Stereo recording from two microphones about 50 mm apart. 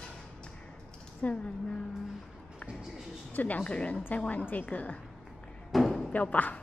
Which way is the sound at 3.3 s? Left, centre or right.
Left.